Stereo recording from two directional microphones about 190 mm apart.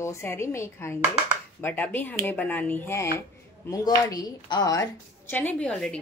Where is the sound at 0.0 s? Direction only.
15° left (ahead or behind).